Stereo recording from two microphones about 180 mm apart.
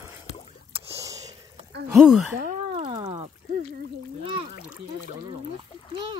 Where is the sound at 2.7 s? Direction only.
30° right (ahead or behind).